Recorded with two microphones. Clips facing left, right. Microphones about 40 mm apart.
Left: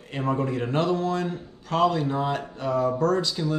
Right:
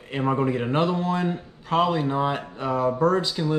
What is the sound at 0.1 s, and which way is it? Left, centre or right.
Speech, right.